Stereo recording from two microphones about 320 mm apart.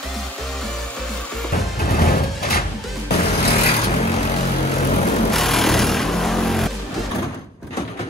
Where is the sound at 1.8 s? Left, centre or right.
Left.